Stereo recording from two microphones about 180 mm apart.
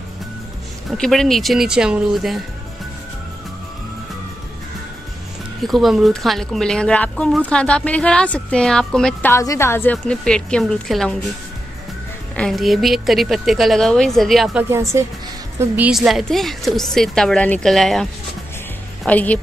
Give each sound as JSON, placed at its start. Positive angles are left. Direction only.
{"t": 0.8, "sound": "speech", "side_deg": 5}
{"t": 5.6, "sound": "speech", "side_deg": 0}
{"t": 9.3, "sound": "speech", "side_deg": 15}
{"t": 12.4, "sound": "speech", "side_deg": 0}
{"t": 14.6, "sound": "a woman's voice", "side_deg": -15}
{"t": 19.0, "sound": "speech", "side_deg": 10}